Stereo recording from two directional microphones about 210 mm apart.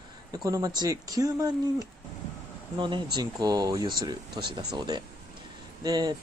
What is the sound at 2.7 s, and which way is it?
Speech, 20° right (ahead or behind).